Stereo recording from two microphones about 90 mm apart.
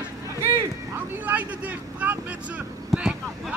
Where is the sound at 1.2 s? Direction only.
20° right (ahead or behind).